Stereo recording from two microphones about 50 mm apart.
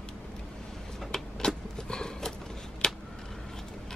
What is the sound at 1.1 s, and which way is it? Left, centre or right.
Vehicle, centre.